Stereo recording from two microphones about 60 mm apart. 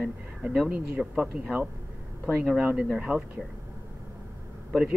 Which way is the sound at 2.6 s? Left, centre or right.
Centre.